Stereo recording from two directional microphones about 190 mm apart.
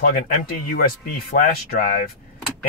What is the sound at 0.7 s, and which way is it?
Speech, 50° left (ahead or behind).